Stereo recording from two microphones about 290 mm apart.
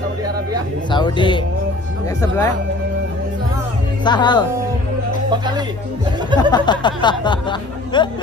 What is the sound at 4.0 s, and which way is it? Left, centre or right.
Speech, centre.